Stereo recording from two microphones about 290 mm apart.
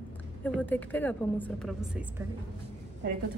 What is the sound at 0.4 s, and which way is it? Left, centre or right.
A woman's voice, centre.